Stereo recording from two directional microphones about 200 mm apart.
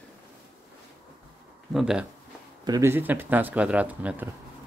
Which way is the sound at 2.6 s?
15° right (ahead or behind).